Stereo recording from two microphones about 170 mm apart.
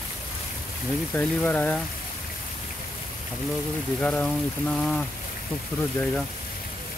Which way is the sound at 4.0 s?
10° left (ahead or behind).